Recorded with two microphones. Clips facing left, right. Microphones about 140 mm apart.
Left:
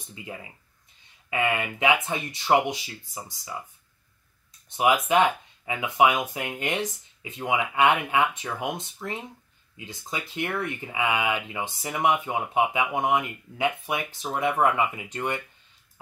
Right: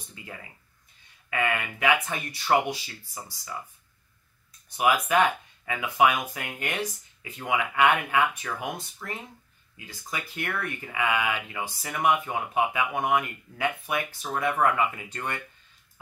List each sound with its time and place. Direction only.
0.1 s speech: 20° left (ahead or behind)
4.6 s speech: 25° left (ahead or behind)